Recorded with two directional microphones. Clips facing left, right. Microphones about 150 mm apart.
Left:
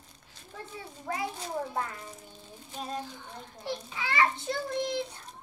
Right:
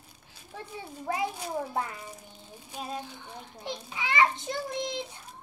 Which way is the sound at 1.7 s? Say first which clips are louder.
Right 2 dB; 10° right (ahead or behind).